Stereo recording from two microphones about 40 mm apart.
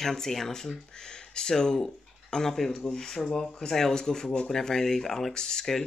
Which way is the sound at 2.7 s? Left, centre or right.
Left.